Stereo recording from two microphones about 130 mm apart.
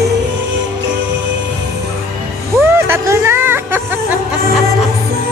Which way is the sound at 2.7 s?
20° right (ahead or behind).